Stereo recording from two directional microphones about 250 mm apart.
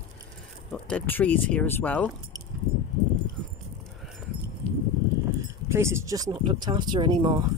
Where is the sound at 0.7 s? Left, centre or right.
Centre.